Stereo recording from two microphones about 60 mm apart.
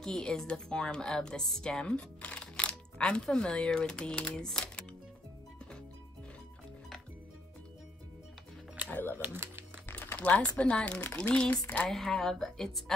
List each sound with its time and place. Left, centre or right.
0.0 s speech: centre
9.1 s speech: right
9.8 s speech: left; by 11.5 s centre
11.9 s speech: centre